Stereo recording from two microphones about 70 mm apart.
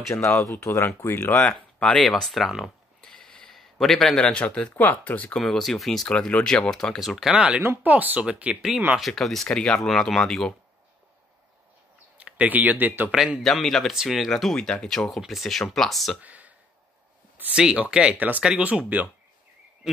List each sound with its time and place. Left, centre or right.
0.1 s speech: left
1.8 s speech: centre
3.0 s a sound: centre
4.8 s speech: left
5.4 s speech: centre
7.0 s speech: centre
7.8 s speech: right
8.9 s speech: centre
12.2 s speech: centre
13.1 s speech: centre
13.4 s speech: centre
16.2 s a sound: right
17.4 s speech: centre